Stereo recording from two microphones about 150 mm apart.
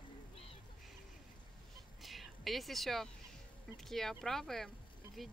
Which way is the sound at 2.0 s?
Centre (ahead or behind).